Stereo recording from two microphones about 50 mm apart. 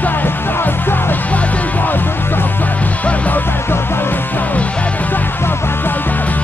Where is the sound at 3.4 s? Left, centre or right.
Left.